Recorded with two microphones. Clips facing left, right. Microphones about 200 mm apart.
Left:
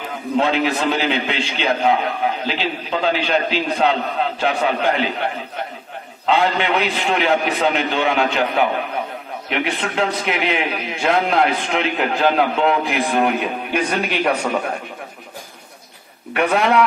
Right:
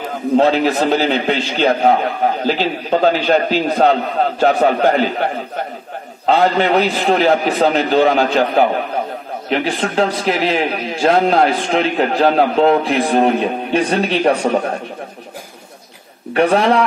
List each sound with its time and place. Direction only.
0.4 s a man's voice: 40° right (ahead or behind)
16.3 s a man's voice: 30° right (ahead or behind)